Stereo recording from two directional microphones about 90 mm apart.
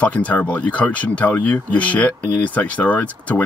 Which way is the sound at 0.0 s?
15° left (ahead or behind).